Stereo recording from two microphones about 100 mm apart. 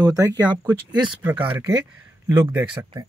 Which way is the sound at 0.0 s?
35° right (ahead or behind).